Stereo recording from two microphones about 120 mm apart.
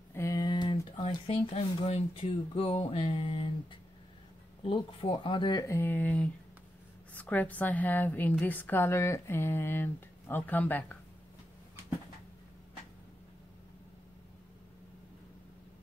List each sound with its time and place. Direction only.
0.1 s a sound: 25° left (ahead or behind)
0.4 s speech: 40° left (ahead or behind)
4.6 s speech: 45° left (ahead or behind)
5.7 s a woman's voice: 15° left (ahead or behind)